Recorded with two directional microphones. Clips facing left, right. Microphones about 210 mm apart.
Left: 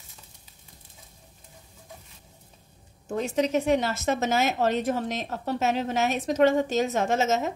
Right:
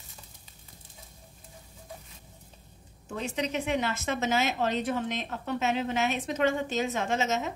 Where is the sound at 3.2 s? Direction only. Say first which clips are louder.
Left 7 dB; 45° left (ahead or behind).